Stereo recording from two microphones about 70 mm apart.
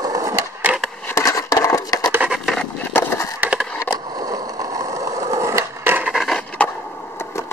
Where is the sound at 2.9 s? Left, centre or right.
Left.